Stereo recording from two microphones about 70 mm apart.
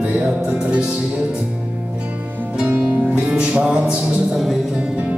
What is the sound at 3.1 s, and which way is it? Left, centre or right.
Music, centre.